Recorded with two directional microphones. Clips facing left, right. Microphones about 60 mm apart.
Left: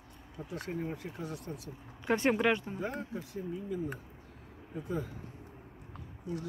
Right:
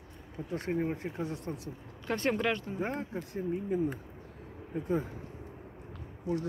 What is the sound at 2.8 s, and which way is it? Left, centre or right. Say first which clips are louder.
Speech: right 3 dB; right.